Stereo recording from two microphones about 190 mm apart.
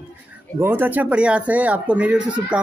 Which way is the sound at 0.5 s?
10° right (ahead or behind).